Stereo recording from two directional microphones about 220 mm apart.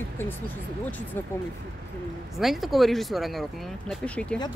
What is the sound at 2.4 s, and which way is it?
Speech, centre (ahead or behind).